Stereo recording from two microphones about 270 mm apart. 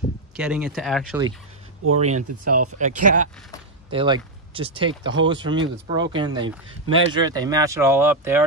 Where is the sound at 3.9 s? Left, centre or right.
Centre.